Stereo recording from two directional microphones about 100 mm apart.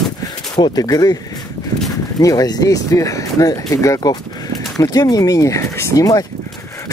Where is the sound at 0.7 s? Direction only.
40° left (ahead or behind).